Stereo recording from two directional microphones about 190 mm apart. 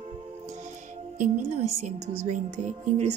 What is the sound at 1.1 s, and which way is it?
A woman's voice, 40° right (ahead or behind).